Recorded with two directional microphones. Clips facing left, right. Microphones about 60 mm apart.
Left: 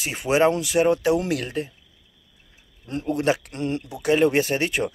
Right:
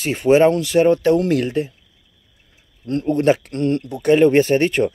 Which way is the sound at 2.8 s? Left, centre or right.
Centre.